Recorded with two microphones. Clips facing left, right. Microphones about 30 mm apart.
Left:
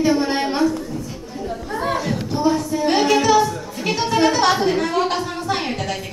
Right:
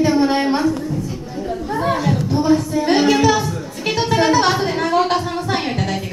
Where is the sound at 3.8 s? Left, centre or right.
Centre.